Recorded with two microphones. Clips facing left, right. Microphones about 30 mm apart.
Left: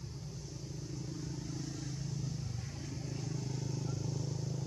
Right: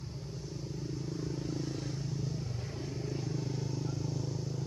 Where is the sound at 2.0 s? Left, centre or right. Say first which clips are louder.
Right 4 dB; centre.